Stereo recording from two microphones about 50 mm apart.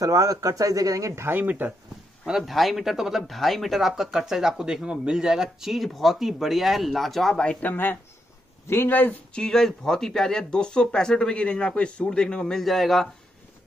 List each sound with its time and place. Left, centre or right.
0.4 s speech: right
1.4 s speech: right
2.4 s speech: centre
7.6 s speech: left
9.3 s speech: centre
12.5 s speech: centre